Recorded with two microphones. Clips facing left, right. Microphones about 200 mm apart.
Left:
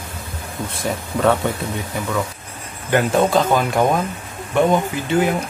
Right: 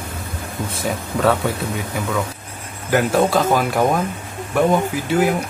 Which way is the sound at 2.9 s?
5° right (ahead or behind).